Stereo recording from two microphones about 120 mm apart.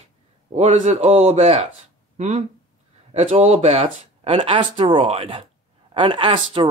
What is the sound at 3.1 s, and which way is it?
Speech, 60° right (ahead or behind).